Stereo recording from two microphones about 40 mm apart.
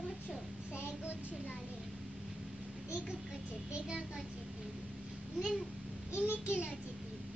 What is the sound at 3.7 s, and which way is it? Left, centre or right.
Speech, right.